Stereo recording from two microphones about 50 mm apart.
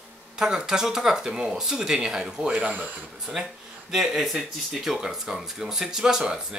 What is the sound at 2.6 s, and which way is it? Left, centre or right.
Speech, right.